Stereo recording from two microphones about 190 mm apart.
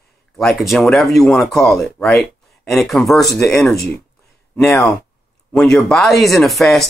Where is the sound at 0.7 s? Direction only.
Centre (ahead or behind).